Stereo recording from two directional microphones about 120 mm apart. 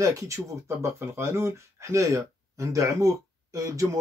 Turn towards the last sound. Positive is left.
turn(degrees=-25)  # may be behind; listen again after turning